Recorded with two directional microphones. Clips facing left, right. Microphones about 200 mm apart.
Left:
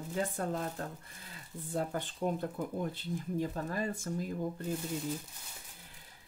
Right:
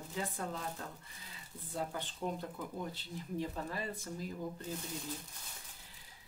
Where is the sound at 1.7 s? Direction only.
50° left (ahead or behind).